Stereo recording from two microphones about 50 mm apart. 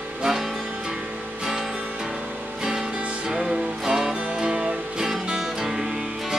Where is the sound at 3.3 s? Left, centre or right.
Centre.